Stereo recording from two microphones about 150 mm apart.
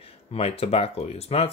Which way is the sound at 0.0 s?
40° left (ahead or behind).